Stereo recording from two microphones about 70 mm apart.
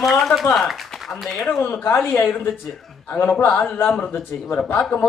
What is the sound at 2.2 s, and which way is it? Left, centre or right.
A man's voice, left.